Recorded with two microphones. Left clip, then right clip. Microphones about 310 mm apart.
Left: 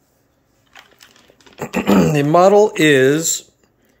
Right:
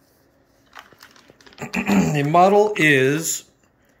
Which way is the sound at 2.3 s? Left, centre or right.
Centre.